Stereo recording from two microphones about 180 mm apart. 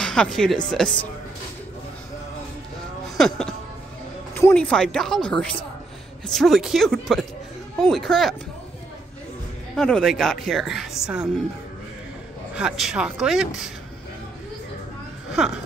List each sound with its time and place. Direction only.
0.0 s speech: 5° left (ahead or behind)
3.2 s speech: centre (ahead or behind)
9.8 s speech: 5° left (ahead or behind)
12.5 s speech: 5° right (ahead or behind)